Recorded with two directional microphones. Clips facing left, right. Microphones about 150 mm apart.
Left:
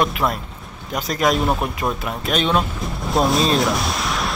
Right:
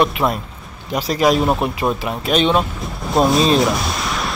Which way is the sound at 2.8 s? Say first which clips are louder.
Right 3 dB; centre (ahead or behind).